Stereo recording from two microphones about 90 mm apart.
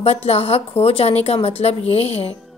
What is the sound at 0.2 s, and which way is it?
A woman's voice, 90° left.